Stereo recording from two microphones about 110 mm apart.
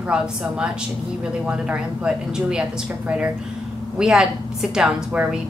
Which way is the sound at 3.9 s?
5° right (ahead or behind).